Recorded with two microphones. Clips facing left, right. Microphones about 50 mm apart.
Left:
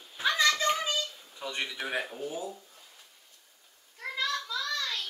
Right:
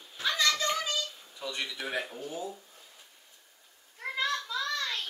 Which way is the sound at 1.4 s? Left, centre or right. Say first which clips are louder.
Left 1 dB; left.